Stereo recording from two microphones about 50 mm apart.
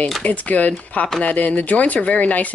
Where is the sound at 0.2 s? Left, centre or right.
Left.